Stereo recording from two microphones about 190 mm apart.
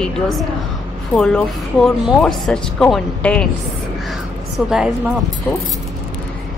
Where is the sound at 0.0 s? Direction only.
Centre (ahead or behind).